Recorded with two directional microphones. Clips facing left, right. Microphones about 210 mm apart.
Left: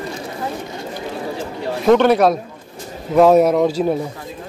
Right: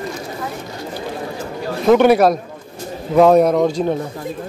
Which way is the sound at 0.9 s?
25° left (ahead or behind).